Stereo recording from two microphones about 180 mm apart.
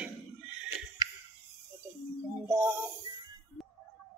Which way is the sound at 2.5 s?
15° right (ahead or behind).